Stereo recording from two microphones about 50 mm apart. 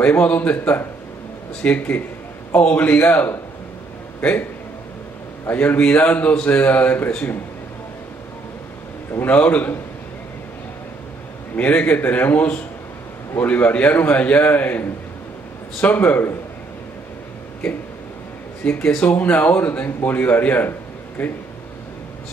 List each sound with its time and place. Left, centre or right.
0.0 s speech: left
5.5 s speech: left
9.2 s speech: left
11.5 s speech: left
18.8 s speech: centre
19.0 s speech: left